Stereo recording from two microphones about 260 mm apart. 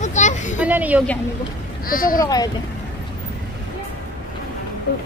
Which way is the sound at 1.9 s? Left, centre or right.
Left.